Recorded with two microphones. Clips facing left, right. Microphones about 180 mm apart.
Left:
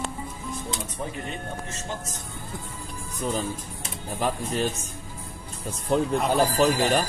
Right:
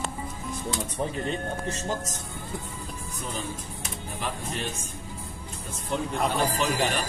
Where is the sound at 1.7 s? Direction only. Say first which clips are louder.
Right 5 dB; 35° right (ahead or behind).